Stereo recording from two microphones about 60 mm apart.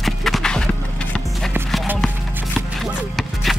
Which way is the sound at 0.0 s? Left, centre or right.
Centre.